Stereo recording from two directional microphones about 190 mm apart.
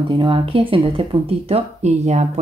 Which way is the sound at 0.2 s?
25° right (ahead or behind).